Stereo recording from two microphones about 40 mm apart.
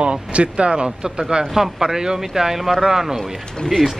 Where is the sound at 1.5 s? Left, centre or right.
Centre.